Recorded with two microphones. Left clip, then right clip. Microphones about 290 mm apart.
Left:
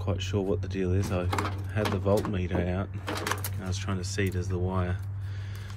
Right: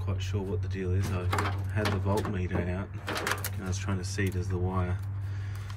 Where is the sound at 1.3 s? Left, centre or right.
Centre.